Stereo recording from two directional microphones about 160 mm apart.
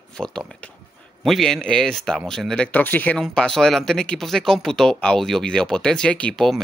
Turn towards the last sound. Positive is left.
turn(degrees=0)  # may be behind; listen again after turning